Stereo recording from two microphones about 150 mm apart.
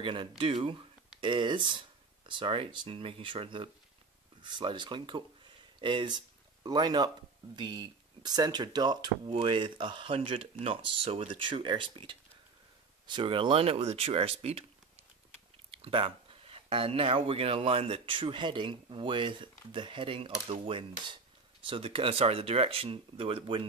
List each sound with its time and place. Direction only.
0.0 s speech: 35° right (ahead or behind)
15.8 s speech: 35° right (ahead or behind)